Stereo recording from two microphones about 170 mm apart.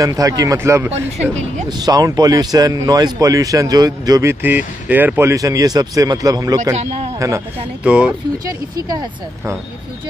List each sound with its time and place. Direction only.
0.0 s speech: 20° right (ahead or behind)
6.7 s speech: 40° right (ahead or behind)
7.2 s speech: 15° right (ahead or behind)
7.8 s speech: 5° right (ahead or behind)
8.5 s speech: 20° right (ahead or behind)